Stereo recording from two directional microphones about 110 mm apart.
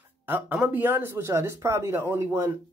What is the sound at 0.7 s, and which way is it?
Speech, 20° right (ahead or behind).